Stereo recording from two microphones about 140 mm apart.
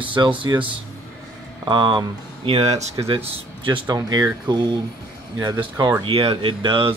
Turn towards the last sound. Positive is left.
turn(degrees=-40)  # may be behind; listen again after turning